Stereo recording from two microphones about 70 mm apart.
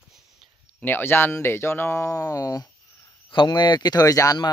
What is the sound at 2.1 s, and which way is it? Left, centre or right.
Speech, left.